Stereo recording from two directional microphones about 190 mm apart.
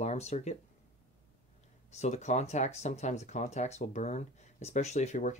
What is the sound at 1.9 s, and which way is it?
Speech, 35° left (ahead or behind).